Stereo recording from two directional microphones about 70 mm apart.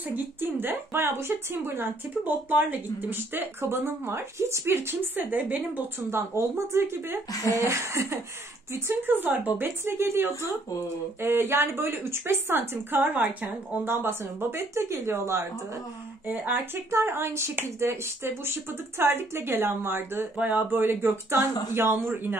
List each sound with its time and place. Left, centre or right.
0.1 s a woman's voice: right
6.0 s a woman's voice: right